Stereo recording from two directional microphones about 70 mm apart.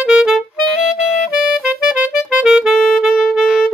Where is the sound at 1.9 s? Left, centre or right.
Centre.